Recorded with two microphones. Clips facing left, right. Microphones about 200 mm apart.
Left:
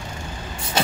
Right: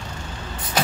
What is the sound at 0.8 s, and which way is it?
Vehicle, 25° left (ahead or behind).